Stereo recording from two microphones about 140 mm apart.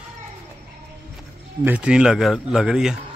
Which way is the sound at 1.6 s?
10° right (ahead or behind).